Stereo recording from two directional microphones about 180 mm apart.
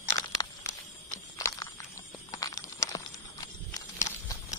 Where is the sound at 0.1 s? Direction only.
20° left (ahead or behind).